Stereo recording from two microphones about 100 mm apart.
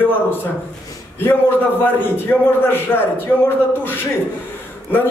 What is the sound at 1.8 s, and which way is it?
A man's voice, 20° left (ahead or behind).